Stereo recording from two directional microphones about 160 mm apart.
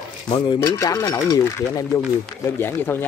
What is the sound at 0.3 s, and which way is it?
Speech, 25° left (ahead or behind).